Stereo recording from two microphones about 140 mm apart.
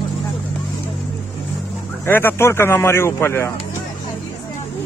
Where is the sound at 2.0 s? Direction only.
15° left (ahead or behind).